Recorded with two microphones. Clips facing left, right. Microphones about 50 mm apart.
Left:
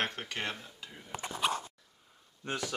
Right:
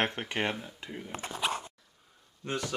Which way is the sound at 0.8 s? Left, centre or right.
Right.